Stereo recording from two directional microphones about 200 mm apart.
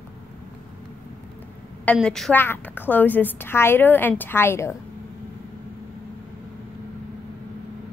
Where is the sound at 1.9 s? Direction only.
Centre (ahead or behind).